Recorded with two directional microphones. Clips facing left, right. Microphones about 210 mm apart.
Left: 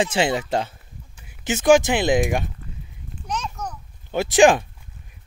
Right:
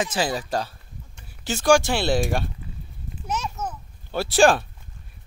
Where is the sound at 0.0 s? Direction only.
25° left (ahead or behind).